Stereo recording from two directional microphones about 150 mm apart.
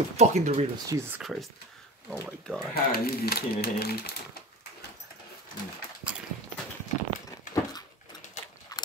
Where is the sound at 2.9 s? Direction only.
90° left.